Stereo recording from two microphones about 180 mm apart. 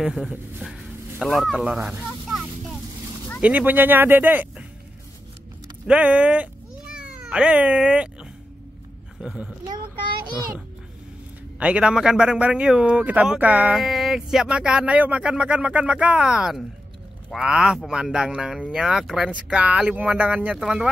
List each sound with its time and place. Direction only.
0.0 s speech: centre (ahead or behind)
5.9 s cat: 5° right (ahead or behind)
9.2 s a man's voice: 5° right (ahead or behind)
9.7 s a child's voice: 25° right (ahead or behind)
11.6 s a man's voice: 5° right (ahead or behind)